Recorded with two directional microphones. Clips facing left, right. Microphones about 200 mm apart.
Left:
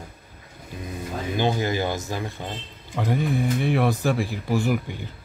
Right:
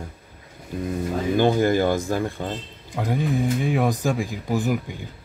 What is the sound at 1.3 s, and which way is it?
Speech, 50° right (ahead or behind).